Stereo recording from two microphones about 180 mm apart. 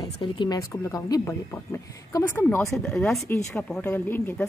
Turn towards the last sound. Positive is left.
turn(degrees=10)  # may be behind; listen again after turning